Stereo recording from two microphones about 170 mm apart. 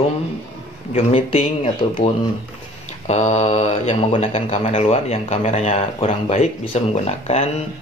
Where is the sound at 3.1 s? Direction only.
40° left (ahead or behind).